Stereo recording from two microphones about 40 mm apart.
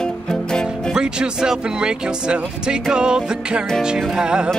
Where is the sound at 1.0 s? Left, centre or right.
Centre.